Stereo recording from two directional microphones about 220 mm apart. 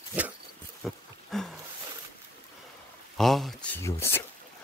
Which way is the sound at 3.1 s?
Centre (ahead or behind).